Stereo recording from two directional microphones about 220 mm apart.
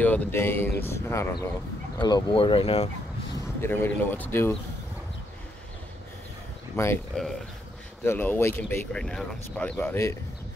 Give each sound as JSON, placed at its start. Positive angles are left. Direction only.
{"t": 0.0, "sound": "speech", "side_deg": 10}
{"t": 3.6, "sound": "speech", "side_deg": 10}
{"t": 6.8, "sound": "speech", "side_deg": 10}
{"t": 8.0, "sound": "speech", "side_deg": 10}